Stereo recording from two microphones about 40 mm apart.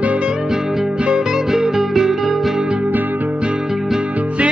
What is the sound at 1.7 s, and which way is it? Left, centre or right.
Music, centre.